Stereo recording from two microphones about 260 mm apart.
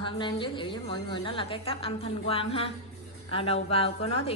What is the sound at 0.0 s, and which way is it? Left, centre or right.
A woman's voice, centre.